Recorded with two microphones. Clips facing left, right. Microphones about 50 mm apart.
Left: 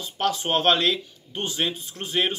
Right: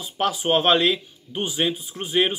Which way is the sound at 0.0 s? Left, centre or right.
Centre.